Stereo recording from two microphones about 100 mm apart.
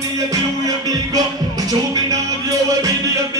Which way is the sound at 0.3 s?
40° right (ahead or behind).